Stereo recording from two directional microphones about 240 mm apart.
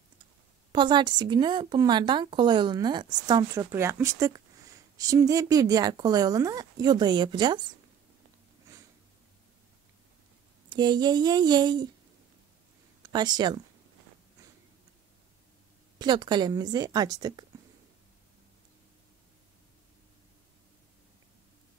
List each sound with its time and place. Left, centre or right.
0.7 s speech: centre
10.7 s speech: centre
13.0 s speech: centre
16.0 s speech: centre